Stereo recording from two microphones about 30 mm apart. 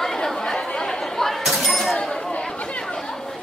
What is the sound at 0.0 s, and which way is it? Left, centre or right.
Chatter, centre.